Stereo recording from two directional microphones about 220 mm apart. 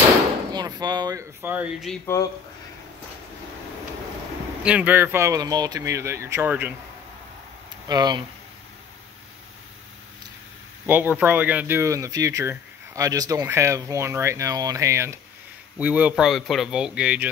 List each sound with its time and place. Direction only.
0.5 s speech: 20° right (ahead or behind)
4.6 s speech: 5° right (ahead or behind)
7.9 s speech: 20° right (ahead or behind)
10.9 s speech: 10° right (ahead or behind)